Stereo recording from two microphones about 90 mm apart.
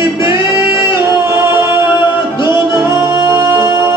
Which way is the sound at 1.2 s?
35° right (ahead or behind).